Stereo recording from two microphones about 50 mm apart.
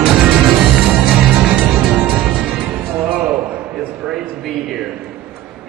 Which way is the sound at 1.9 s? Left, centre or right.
Right.